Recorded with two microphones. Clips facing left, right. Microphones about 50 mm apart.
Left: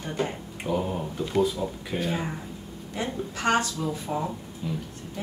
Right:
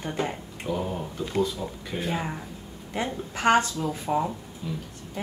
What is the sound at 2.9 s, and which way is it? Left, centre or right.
Speech, right.